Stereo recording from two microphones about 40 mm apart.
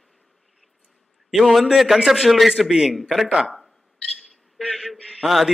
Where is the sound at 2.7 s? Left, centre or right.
Centre.